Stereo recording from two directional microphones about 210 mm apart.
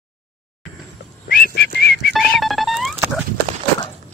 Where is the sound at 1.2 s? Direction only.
45° left (ahead or behind).